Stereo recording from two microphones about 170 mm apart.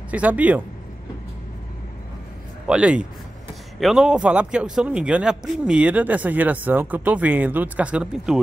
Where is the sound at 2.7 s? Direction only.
5° right (ahead or behind).